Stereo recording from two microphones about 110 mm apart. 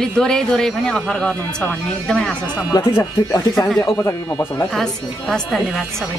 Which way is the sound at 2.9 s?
25° left (ahead or behind).